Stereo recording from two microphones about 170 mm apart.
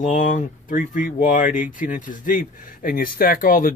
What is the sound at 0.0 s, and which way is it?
Speech, 50° left (ahead or behind).